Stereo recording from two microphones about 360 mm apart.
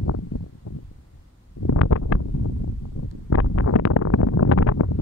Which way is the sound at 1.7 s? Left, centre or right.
Left.